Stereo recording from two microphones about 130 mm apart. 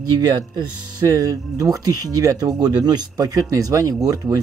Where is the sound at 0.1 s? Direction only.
30° right (ahead or behind).